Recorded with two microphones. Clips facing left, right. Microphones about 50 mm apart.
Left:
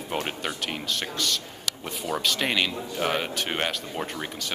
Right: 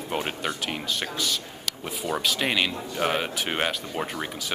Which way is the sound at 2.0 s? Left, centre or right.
Centre.